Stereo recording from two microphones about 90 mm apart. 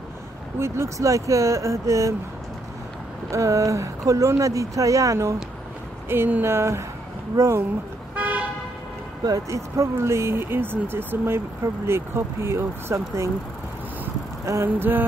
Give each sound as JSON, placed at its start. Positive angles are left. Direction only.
{"t": 0.6, "sound": "speech", "side_deg": -30}
{"t": 3.3, "sound": "speech", "side_deg": -35}
{"t": 6.0, "sound": "speech", "side_deg": -25}
{"t": 8.2, "sound": "car", "side_deg": -15}
{"t": 9.2, "sound": "speech", "side_deg": -40}
{"t": 14.4, "sound": "vehicle", "side_deg": -35}
{"t": 14.8, "sound": "speech", "side_deg": -20}